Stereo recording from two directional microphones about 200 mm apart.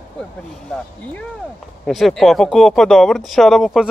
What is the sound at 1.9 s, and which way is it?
Speech, centre (ahead or behind).